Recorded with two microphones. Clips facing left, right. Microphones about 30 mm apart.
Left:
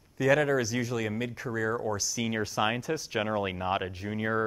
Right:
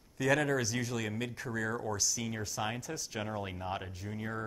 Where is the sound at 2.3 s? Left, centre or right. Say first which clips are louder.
Left 8 dB; left.